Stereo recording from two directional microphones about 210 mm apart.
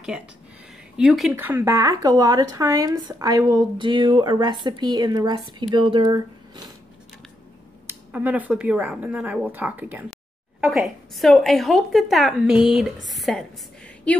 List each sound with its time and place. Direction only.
0.9 s a woman's voice: centre (ahead or behind); by 6.7 s 20° right (ahead or behind)
7.8 s a woman's voice: 10° right (ahead or behind)